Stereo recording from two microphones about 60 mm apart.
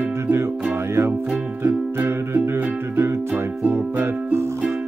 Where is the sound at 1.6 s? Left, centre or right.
Right.